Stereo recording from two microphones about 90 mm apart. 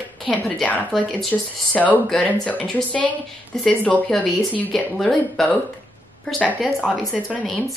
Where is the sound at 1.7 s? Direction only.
20° left (ahead or behind).